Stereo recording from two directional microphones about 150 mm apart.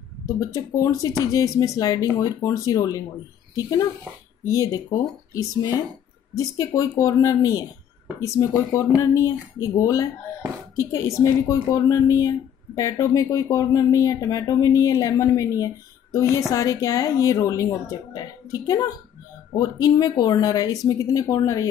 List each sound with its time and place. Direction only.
0.3 s speech: 20° left (ahead or behind)
4.5 s speech: 25° left (ahead or behind)